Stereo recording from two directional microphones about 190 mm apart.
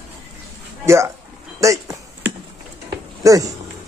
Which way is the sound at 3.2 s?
20° right (ahead or behind).